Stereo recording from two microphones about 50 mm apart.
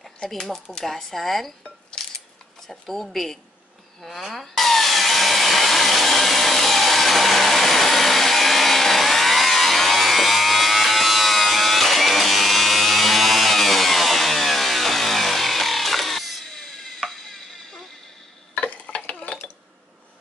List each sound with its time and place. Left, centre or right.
0.3 s speech: centre
1.6 s music: centre
2.7 s speech: centre
4.0 s sawing: centre
17.1 s stir: centre
18.5 s dishes: left